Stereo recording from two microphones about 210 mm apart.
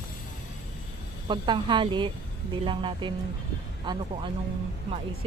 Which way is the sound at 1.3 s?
20° right (ahead or behind).